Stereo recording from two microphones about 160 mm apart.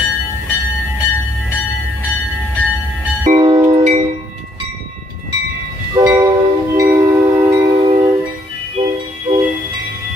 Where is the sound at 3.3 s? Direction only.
35° right (ahead or behind).